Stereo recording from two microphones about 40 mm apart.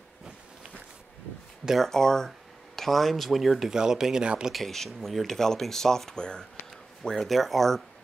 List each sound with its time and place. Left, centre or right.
1.8 s speech: centre
3.7 s speech: centre
4.5 s speech: centre; by 6.4 s left
7.2 s speech: centre